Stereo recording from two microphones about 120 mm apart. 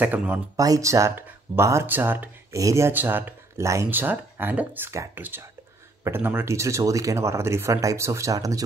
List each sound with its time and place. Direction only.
0.0 s speech: 15° right (ahead or behind)
0.6 s speech: 30° right (ahead or behind)